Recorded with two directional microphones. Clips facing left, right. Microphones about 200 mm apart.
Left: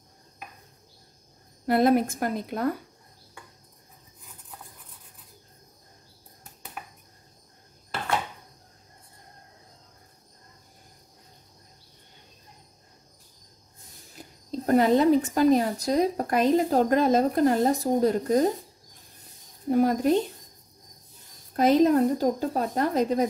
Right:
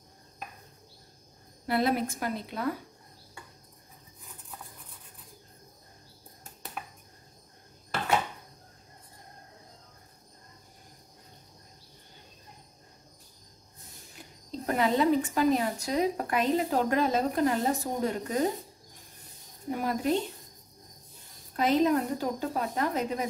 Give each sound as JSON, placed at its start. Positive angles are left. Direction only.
{"t": 1.7, "sound": "a woman's voice", "side_deg": 50}
{"t": 6.8, "sound": "a sound", "side_deg": 5}
{"t": 14.7, "sound": "speech", "side_deg": 45}
{"t": 19.7, "sound": "speech", "side_deg": 40}
{"t": 21.5, "sound": "speech", "side_deg": 40}